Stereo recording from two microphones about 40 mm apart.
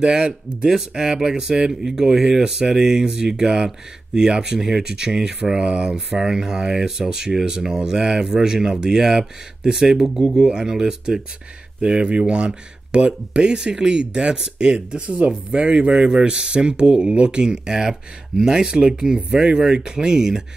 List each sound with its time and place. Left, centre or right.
0.0 s speech: right
10.3 s speech: centre